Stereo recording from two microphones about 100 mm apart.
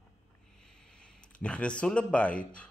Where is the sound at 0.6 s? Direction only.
5° left (ahead or behind).